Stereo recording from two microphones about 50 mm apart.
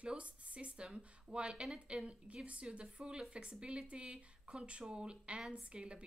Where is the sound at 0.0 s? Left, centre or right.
Right.